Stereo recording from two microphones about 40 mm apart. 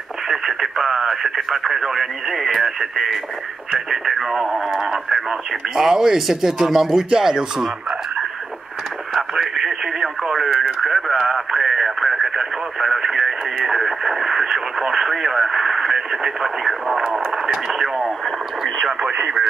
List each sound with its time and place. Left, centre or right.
0.3 s speech: centre
9.1 s speech: centre
18.9 s speech: right